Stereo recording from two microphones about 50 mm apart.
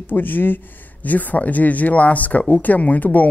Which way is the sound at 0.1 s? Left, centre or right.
Left.